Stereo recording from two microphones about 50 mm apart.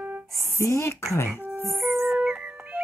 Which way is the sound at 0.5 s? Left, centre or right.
Left.